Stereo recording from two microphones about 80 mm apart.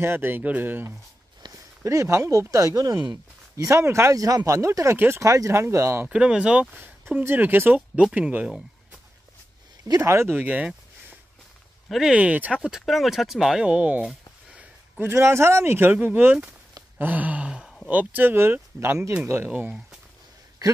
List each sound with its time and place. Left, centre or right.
0.0 s speech: right
1.8 s speech: right
4.9 s speech: right
5.2 s speech: right
6.0 s speech: centre
6.8 s speech: right
9.9 s speech: right
10.3 s a sound: centre
11.9 s speech: centre
12.2 s speech: centre
12.8 s speech: centre
15.0 s speech: right
17.0 s a sound: centre
17.8 s speech: centre